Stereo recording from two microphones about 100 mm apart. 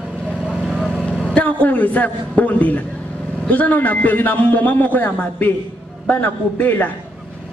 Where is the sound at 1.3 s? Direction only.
15° left (ahead or behind).